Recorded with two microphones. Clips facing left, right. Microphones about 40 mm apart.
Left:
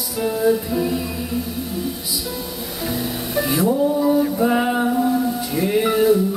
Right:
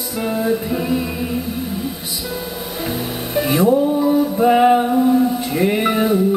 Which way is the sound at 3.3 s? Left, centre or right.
Right.